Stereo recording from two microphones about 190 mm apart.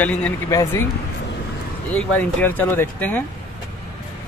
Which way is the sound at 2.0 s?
10° left (ahead or behind).